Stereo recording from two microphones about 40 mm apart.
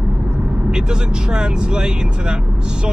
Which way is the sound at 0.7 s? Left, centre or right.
Right.